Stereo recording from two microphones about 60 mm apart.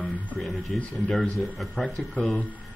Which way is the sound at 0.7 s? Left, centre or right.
Centre.